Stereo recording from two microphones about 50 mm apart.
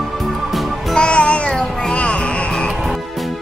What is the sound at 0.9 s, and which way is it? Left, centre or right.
Music, centre.